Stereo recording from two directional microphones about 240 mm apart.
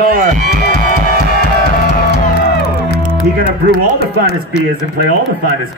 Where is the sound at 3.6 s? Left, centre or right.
Left.